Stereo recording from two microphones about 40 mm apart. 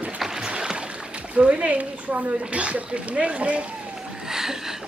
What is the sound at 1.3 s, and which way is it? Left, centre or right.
Speech, right.